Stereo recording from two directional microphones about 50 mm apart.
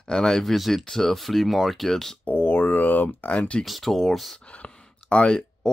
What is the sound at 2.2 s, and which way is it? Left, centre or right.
Speech, left.